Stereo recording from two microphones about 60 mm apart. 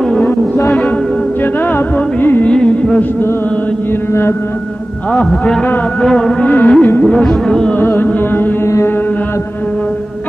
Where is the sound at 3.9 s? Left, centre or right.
Left.